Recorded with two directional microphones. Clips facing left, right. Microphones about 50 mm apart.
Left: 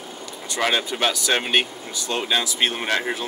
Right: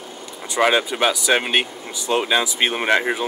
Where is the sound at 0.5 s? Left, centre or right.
Centre.